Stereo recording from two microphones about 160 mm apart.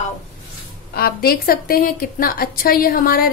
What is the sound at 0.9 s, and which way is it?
A woman's voice, 70° left (ahead or behind).